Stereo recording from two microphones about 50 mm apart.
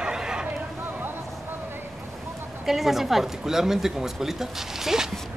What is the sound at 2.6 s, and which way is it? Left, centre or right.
Speech, centre.